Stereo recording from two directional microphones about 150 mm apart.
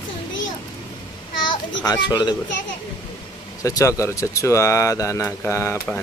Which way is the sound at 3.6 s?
20° left (ahead or behind).